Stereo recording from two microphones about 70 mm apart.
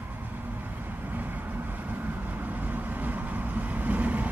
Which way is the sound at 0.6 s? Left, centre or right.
Right.